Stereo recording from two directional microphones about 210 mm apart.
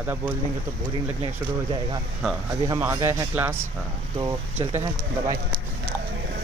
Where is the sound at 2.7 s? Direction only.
10° right (ahead or behind).